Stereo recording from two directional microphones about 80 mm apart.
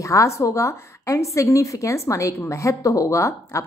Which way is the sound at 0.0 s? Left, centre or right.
Left.